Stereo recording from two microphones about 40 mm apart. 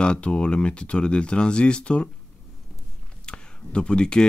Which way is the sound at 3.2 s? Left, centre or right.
Left.